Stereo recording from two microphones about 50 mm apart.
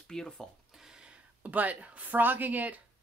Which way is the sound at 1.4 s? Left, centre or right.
Right.